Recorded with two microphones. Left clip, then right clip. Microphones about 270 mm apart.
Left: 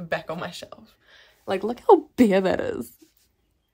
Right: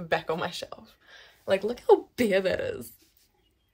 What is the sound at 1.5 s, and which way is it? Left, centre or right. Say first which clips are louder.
Speech: left 4 dB; left.